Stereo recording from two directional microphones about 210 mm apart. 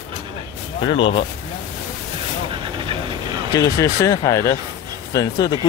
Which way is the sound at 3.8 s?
15° left (ahead or behind).